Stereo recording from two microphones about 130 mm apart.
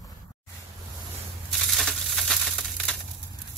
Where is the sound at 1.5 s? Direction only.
Centre (ahead or behind).